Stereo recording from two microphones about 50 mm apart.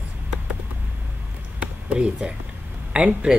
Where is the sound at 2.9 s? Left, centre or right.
Right.